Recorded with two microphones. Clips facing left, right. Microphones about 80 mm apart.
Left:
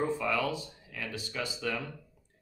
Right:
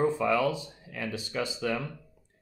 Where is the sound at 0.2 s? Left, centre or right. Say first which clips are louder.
Right 5 dB; right.